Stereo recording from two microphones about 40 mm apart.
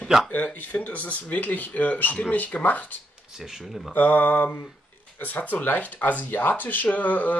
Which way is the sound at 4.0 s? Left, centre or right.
Left.